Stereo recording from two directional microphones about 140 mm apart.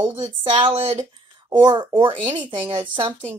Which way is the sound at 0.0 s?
35° right (ahead or behind).